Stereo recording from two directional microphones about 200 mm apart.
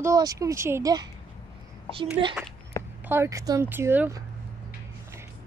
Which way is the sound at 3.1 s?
15° right (ahead or behind).